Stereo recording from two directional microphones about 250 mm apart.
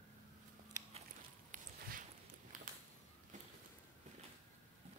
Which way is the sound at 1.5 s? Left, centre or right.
Right.